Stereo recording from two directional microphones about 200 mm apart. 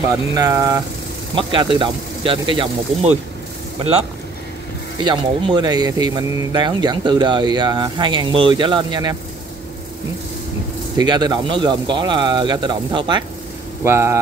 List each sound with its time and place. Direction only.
0.3 s speech: 20° right (ahead or behind)
5.0 s speech: 20° right (ahead or behind)
11.0 s speech: 20° right (ahead or behind)